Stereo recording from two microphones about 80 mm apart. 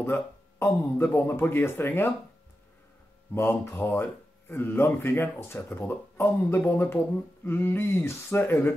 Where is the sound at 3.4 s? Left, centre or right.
Left.